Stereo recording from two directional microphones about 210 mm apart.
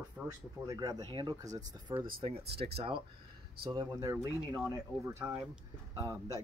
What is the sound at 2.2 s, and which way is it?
Speech, 30° right (ahead or behind).